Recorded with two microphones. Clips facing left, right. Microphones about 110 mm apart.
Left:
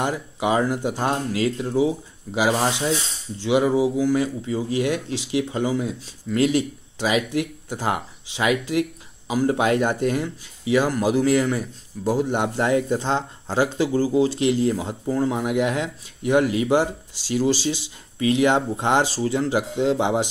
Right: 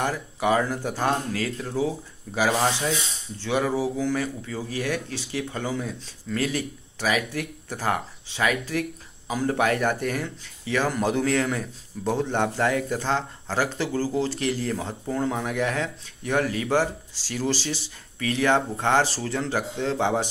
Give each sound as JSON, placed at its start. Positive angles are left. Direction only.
{"t": 0.0, "sound": "a man's voice", "side_deg": 20}
{"t": 10.9, "sound": "a man's voice", "side_deg": 5}